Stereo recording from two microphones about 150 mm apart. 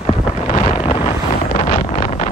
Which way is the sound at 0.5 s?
40° left (ahead or behind).